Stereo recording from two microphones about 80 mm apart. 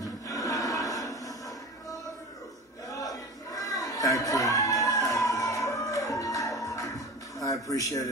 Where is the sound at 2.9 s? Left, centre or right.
Left.